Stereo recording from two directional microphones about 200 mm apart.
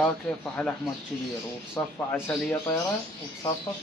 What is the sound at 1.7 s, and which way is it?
Speech, 10° left (ahead or behind).